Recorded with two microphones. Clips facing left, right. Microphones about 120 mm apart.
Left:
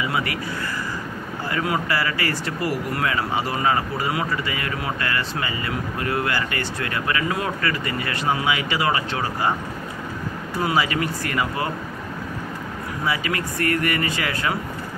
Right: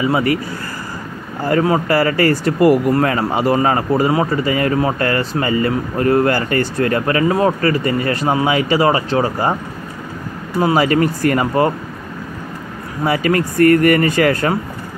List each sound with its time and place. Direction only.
0.0 s speech: 35° right (ahead or behind)
1.4 s speech: 40° right (ahead or behind)
10.8 s speech: 45° right (ahead or behind)
13.0 s speech: 50° right (ahead or behind)